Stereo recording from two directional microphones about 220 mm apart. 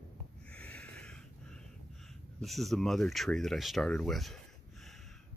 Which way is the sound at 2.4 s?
Centre (ahead or behind).